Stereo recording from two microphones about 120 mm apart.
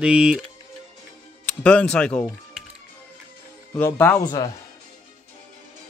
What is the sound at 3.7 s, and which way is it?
Speech, 15° left (ahead or behind).